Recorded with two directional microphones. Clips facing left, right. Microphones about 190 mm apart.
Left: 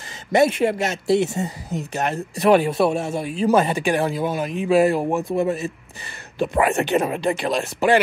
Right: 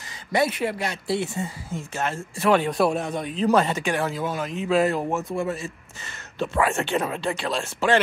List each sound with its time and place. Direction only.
0.6 s speech: 40° left (ahead or behind)
1.7 s speech: 20° left (ahead or behind)
2.7 s speech: 5° left (ahead or behind)